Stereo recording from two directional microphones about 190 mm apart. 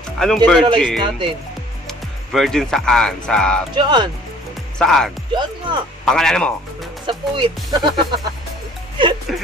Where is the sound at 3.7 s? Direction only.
25° right (ahead or behind).